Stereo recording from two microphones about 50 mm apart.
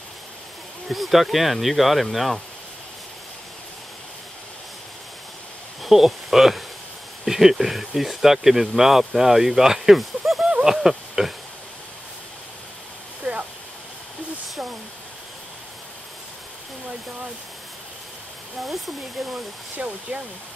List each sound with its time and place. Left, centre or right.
0.8 s speech: centre
5.8 s speech: centre
13.2 s a sound: right
18.6 s speech: centre
19.8 s speech: right